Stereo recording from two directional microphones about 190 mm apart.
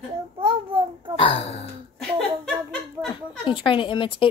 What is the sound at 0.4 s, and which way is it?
Child singing, 30° right (ahead or behind).